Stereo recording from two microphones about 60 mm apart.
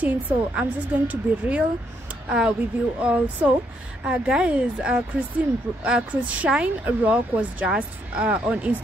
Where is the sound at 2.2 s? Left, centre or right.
Centre.